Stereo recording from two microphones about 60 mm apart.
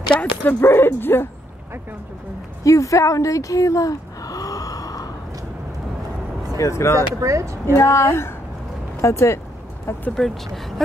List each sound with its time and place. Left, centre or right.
0.1 s speech: left
0.6 s speech: left
2.6 s a sound: left
6.5 s speech: left
7.2 s speech: right
7.6 s a woman's voice: left
10.1 s speech: centre